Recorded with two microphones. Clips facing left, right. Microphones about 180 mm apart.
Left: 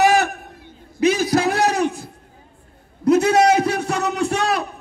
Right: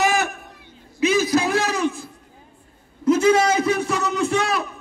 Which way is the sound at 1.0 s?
40° left (ahead or behind).